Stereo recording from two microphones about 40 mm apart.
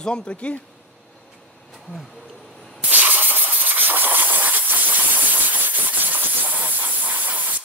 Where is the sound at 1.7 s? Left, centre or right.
Centre.